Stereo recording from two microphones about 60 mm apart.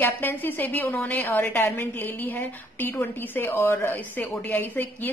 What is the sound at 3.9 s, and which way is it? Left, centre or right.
A woman's voice, left.